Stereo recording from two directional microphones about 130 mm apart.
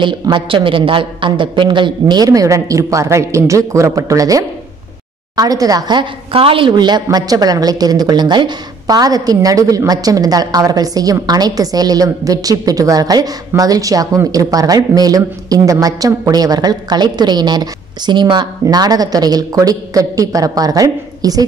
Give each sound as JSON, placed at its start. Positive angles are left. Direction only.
{"t": 0.0, "sound": "a woman's voice", "side_deg": -40}